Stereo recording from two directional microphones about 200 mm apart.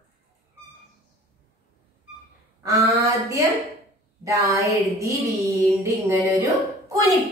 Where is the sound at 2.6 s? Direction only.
15° right (ahead or behind).